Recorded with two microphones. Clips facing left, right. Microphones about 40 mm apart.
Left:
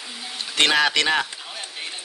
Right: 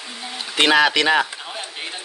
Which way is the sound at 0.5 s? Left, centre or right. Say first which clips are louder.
Right 3 dB; centre.